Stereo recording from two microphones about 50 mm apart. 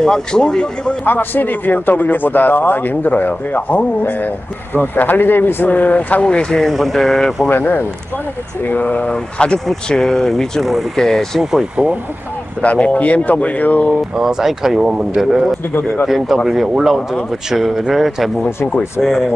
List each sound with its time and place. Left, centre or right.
0.0 s speech: centre
1.0 s speech: left
6.2 s speech: centre
6.6 s speech: centre
7.4 s speech: left
9.1 s speech: centre
11.7 s speech: centre
12.6 s speech: left
14.1 s speech: centre